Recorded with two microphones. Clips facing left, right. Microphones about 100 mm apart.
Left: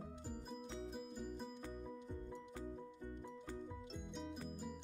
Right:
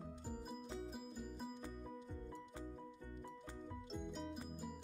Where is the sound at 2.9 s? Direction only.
20° left (ahead or behind).